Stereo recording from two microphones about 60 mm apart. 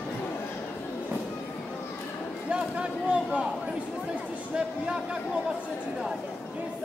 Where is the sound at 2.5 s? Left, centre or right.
Centre.